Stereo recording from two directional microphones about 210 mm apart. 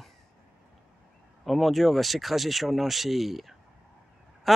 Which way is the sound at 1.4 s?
Centre (ahead or behind).